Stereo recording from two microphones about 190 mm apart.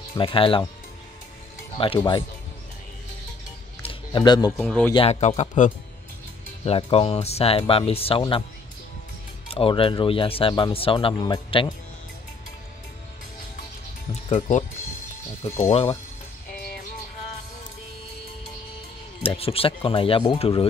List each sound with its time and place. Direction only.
0.2 s speech: 30° left (ahead or behind)
1.8 s speech: 25° left (ahead or behind)
3.8 s a sound: 25° left (ahead or behind)
4.6 s speech: 5° left (ahead or behind)
4.9 s speech: 30° left (ahead or behind)
9.5 s speech: 30° left (ahead or behind)
15.6 s speech: 30° left (ahead or behind)
19.2 s speech: 30° left (ahead or behind)